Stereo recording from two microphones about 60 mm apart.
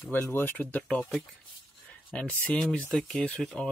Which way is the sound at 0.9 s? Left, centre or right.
Centre.